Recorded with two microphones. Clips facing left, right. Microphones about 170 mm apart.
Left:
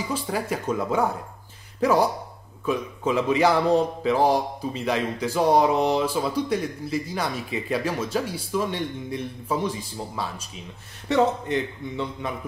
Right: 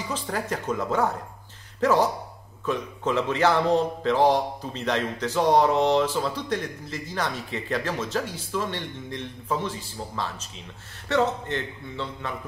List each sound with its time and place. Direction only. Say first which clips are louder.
0.1 s a man's voice: left 1 dB; 10° left (ahead or behind)